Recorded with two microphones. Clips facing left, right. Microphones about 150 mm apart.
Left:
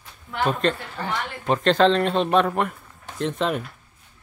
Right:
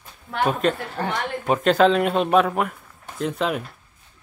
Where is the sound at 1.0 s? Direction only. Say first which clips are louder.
Right 2 dB; 50° right (ahead or behind).